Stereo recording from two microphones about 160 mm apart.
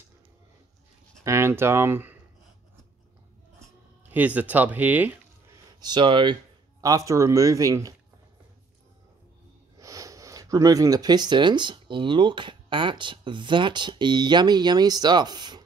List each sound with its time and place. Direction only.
1.2 s speech: 15° right (ahead or behind)
4.1 s speech: 10° right (ahead or behind)
5.8 s speech: 30° right (ahead or behind)
9.8 s speech: 20° right (ahead or behind)